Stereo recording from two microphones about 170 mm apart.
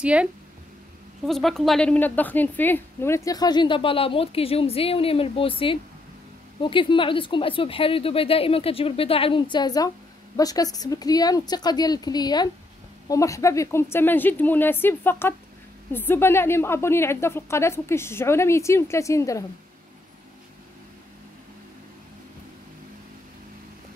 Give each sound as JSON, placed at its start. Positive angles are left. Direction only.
{"t": 0.0, "sound": "a woman's voice", "side_deg": -5}